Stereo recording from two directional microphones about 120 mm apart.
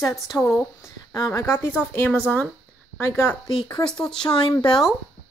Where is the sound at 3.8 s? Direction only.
5° left (ahead or behind).